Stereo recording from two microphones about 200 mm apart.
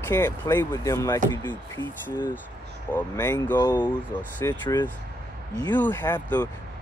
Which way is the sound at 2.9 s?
10° left (ahead or behind).